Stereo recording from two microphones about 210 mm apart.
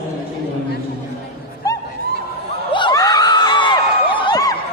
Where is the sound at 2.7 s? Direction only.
20° left (ahead or behind).